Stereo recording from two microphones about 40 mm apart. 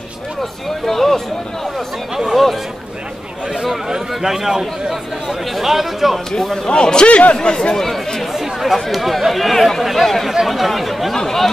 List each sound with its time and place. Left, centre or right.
0.4 s speech: centre
2.1 s a man's voice: centre
3.6 s a man's voice: centre
6.4 s speech: centre
6.7 s speech: left
7.3 s speech: centre